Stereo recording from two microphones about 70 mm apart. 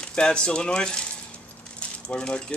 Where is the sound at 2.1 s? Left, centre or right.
Centre.